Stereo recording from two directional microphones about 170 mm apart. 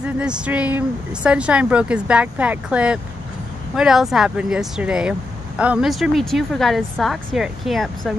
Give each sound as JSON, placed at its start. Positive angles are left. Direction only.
{"t": 0.0, "sound": "speech", "side_deg": -5}